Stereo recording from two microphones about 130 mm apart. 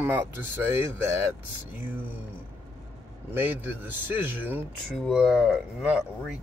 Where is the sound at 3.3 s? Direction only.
15° right (ahead or behind).